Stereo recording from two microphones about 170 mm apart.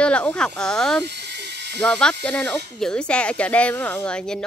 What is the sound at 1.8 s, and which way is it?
Speech, 5° left (ahead or behind).